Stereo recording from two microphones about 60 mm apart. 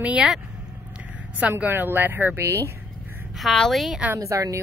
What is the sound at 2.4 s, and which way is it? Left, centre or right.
Speech, right.